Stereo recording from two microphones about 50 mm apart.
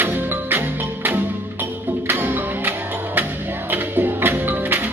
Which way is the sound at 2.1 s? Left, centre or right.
Right.